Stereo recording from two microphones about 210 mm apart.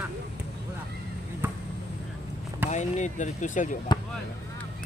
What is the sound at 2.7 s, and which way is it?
Speech, 35° left (ahead or behind).